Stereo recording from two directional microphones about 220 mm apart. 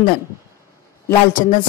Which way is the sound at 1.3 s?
40° left (ahead or behind).